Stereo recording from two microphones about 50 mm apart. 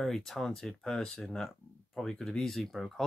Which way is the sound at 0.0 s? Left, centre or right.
Centre.